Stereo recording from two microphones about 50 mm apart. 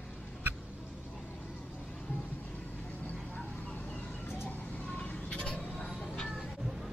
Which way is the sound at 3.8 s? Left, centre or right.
Left.